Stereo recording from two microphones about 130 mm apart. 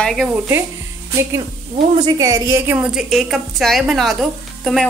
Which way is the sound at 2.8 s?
5° right (ahead or behind).